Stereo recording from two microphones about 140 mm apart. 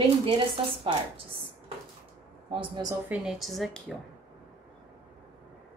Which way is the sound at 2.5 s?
35° right (ahead or behind).